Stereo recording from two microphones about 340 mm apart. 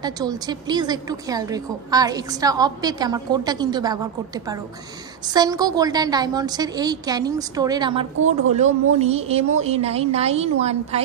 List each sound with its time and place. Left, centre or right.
0.0 s a woman's voice: centre